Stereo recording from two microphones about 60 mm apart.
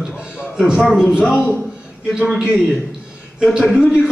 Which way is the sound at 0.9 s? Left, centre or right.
Centre.